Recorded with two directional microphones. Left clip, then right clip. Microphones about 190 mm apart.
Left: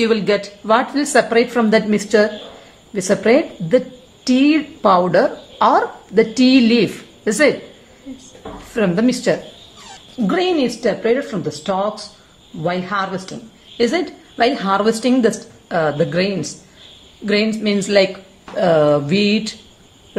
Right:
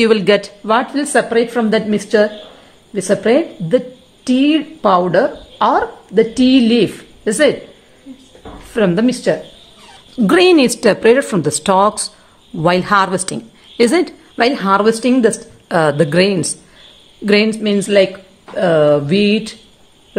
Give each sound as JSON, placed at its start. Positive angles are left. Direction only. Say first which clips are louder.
{"t": 0.0, "sound": "a woman's voice", "louder": "right 5 dB", "side_deg": -30}
{"t": 0.9, "sound": "a woman's voice", "louder": "even", "side_deg": -15}
{"t": 8.7, "sound": "a woman's voice", "louder": "right 3 dB", "side_deg": -20}
{"t": 10.2, "sound": "a woman's voice", "louder": "right 7 dB", "side_deg": -50}
{"t": 15.7, "sound": "a woman's voice", "louder": "right 4 dB", "side_deg": -40}